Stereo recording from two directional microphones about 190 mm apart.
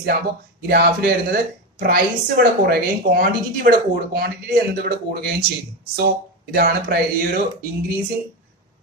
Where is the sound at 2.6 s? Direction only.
50° right (ahead or behind).